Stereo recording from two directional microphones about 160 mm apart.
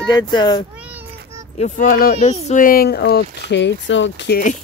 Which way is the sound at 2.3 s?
50° left (ahead or behind).